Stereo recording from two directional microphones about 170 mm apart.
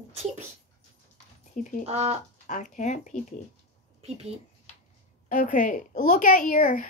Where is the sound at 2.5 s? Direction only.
45° left (ahead or behind).